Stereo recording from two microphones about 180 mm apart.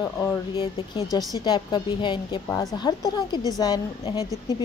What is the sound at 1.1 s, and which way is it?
A woman's voice, 25° left (ahead or behind).